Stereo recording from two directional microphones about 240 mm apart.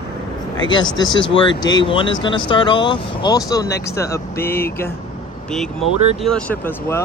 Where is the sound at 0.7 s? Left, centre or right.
Centre.